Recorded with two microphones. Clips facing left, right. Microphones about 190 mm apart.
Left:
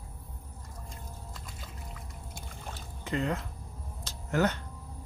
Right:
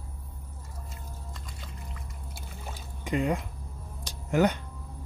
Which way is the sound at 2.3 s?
10° right (ahead or behind).